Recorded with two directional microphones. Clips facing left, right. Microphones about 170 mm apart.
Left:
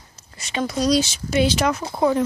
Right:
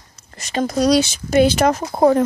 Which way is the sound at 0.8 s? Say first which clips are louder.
Right 4 dB; 65° right (ahead or behind).